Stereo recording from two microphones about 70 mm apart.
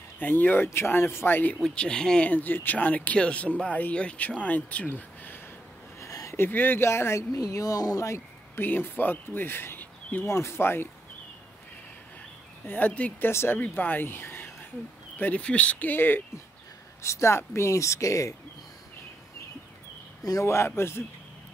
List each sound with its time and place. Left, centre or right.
0.2 s speech: left
1.6 s speech: centre
5.9 s a sound: left
6.3 s speech: left
8.5 s speech: left
12.6 s speech: left
13.3 s speech: left
13.6 s speech: left
17.0 s speech: left
20.2 s speech: left